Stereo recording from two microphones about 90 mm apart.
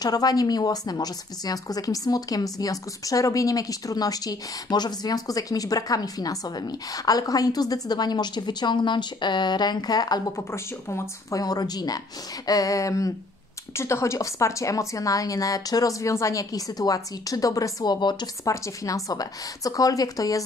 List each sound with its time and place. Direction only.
0.0 s speech: 45° left (ahead or behind)
10.3 s a woman's voice: 30° left (ahead or behind)